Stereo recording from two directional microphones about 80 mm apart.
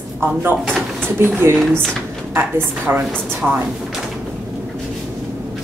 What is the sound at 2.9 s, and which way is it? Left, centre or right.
Speech, right.